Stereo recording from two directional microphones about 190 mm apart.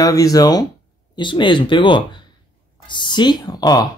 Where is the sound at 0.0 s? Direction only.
20° left (ahead or behind).